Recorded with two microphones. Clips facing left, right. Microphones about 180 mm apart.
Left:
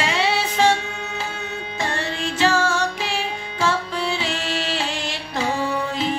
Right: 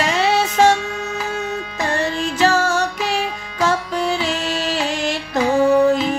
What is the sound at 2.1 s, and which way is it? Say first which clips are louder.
Music: right 1 dB; 40° right (ahead or behind).